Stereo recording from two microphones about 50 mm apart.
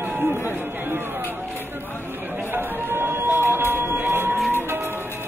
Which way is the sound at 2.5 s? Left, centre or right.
Right.